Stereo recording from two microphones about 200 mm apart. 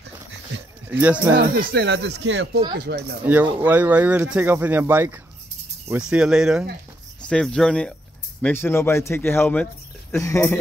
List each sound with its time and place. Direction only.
0.8 s speech: 10° right (ahead or behind)
1.3 s speech: 55° right (ahead or behind)
3.6 s a man's voice: 10° right (ahead or behind); by 10.6 s 15° left (ahead or behind)